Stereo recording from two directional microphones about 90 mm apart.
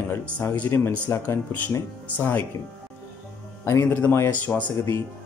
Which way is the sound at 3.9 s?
20° left (ahead or behind).